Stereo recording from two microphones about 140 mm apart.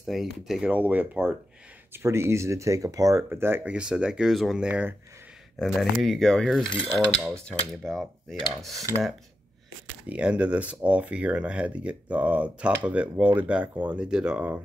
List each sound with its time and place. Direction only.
0.0 s speech: centre (ahead or behind)
5.8 s cutlery: centre (ahead or behind)
6.7 s mechanisms: 45° left (ahead or behind)
7.8 s cutlery: 5° left (ahead or behind)
10.0 s speech: 10° right (ahead or behind)